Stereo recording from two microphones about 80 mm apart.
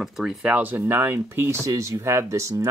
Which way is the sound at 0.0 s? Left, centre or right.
Centre.